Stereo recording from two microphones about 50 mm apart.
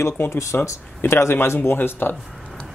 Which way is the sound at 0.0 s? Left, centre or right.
Left.